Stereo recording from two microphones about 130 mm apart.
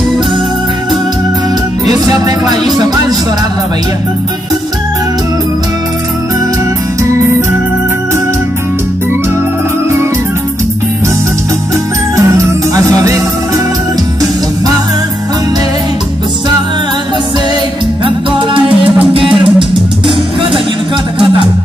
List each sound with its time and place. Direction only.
1.9 s music: 30° right (ahead or behind)
12.2 s music: 25° right (ahead or behind)
19.1 s music: 40° right (ahead or behind)